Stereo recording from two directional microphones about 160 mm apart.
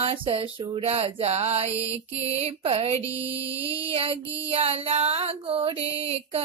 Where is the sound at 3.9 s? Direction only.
35° right (ahead or behind).